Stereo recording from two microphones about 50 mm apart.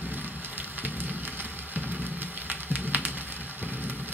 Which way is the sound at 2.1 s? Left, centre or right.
Right.